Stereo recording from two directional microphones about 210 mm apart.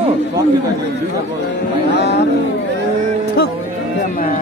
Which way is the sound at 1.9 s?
55° left (ahead or behind).